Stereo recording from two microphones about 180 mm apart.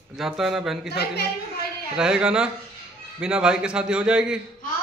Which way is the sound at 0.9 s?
65° left (ahead or behind).